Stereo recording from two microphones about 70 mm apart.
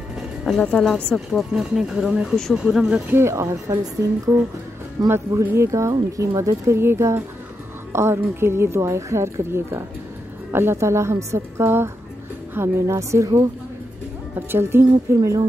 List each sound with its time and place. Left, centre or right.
0.5 s a woman's voice: centre
1.3 s speech: centre
3.1 s a woman's voice: right
5.0 s speech: right
6.8 s a woman's voice: right
14.5 s a woman's voice: right